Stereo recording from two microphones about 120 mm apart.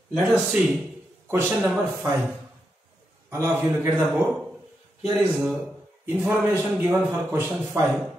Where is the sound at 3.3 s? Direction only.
20° right (ahead or behind).